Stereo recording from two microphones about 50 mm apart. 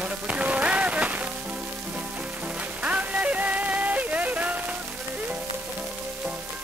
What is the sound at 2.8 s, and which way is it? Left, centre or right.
Music, right.